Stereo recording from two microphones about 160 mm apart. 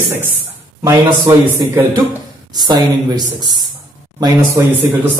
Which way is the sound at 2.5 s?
25° right (ahead or behind).